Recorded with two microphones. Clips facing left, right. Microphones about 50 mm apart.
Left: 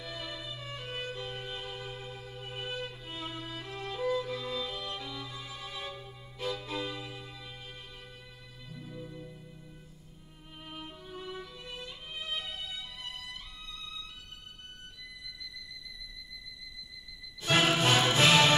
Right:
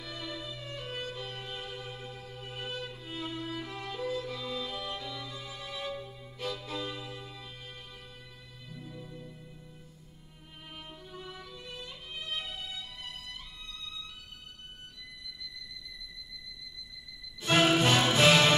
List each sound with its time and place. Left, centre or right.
0.0 s music: centre
1.8 s music: centre
2.4 s music: centre
6.3 s music: centre
8.7 s music: centre
10.7 s music: centre
17.4 s music: centre